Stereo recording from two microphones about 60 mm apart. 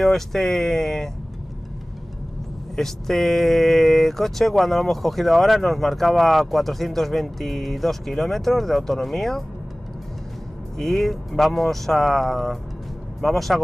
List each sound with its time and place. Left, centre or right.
0.0 s speech: centre
2.7 s speech: centre
10.8 s speech: centre